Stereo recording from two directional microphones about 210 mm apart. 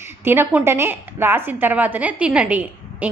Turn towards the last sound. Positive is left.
turn(degrees=-5)  # may be behind; listen again after turning